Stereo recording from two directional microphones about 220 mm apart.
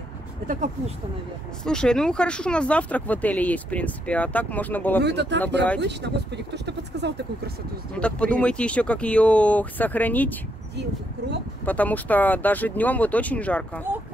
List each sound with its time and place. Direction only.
1.6 s speech: 5° left (ahead or behind)
5.0 s speech: 50° right (ahead or behind)
7.9 s speech: 5° left (ahead or behind)
10.8 s speech: 50° right (ahead or behind)
11.6 s speech: 5° left (ahead or behind)